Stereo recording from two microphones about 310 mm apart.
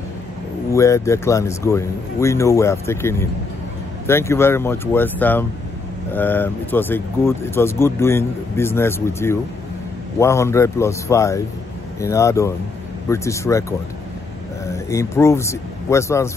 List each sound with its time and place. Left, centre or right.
0.7 s speech: centre
14.9 s speech: centre